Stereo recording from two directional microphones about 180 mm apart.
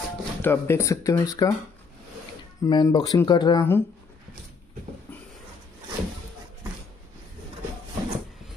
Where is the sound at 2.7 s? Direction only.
25° left (ahead or behind).